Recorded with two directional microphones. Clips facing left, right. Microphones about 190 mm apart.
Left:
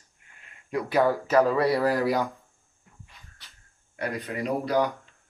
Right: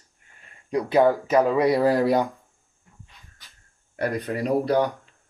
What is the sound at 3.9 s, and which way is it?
Speech, 40° right (ahead or behind).